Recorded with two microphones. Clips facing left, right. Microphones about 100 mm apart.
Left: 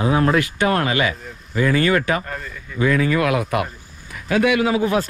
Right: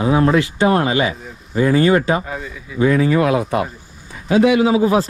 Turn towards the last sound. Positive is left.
turn(degrees=-30)  # may be behind; listen again after turning